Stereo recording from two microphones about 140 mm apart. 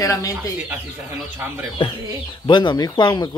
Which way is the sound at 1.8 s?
40° left (ahead or behind).